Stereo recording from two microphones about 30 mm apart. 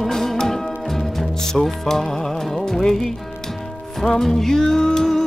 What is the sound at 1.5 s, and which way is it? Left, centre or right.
Music, centre.